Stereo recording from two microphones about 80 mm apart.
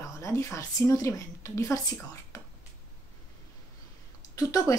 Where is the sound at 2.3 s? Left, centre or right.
Left.